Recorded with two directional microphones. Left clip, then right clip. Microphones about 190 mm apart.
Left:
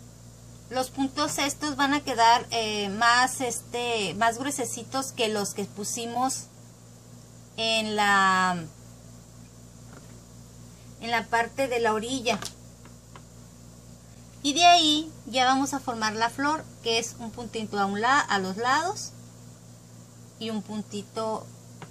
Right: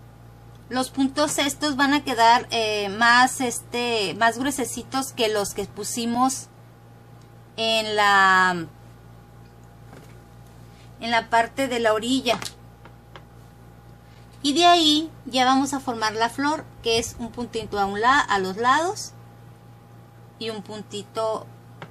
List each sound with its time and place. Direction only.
0.7 s a woman's voice: 25° right (ahead or behind)
7.5 s a woman's voice: 30° right (ahead or behind)
11.0 s speech: 35° right (ahead or behind)
14.4 s a woman's voice: 25° right (ahead or behind)
20.3 s a woman's voice: 25° right (ahead or behind)